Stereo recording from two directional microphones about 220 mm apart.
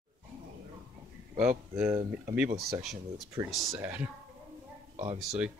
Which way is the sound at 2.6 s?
Centre (ahead or behind).